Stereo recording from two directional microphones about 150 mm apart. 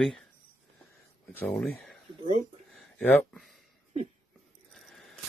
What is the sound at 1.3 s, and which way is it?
Speech, 10° left (ahead or behind).